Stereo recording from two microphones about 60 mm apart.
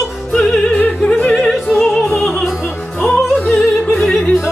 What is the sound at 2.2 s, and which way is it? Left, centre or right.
Music, centre.